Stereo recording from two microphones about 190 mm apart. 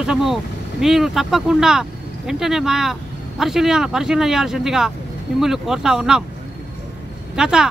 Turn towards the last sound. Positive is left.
turn(degrees=-5)  # may be behind; listen again after turning